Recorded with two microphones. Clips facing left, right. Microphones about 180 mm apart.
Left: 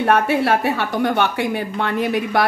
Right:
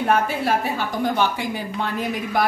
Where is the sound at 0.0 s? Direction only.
70° left (ahead or behind).